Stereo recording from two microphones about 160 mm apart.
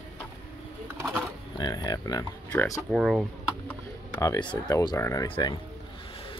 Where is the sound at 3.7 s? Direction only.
20° left (ahead or behind).